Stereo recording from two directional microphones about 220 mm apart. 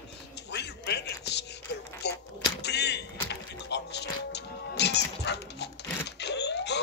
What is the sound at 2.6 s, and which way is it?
Music, 50° left (ahead or behind).